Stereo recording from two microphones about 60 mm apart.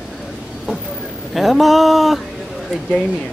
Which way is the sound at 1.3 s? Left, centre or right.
Centre.